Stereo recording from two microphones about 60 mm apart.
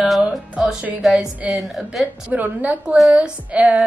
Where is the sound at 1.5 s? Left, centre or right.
Centre.